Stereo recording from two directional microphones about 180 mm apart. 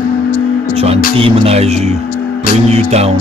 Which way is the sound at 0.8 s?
35° right (ahead or behind).